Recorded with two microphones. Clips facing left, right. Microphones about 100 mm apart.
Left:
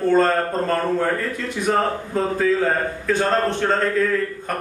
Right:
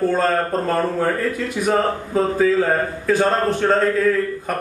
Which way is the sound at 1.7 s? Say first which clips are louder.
Right 1 dB; 5° right (ahead or behind).